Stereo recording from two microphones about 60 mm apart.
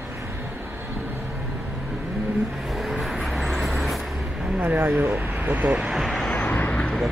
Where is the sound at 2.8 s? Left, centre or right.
Centre.